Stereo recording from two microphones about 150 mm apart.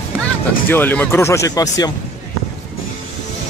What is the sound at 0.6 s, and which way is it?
Speech, 15° left (ahead or behind).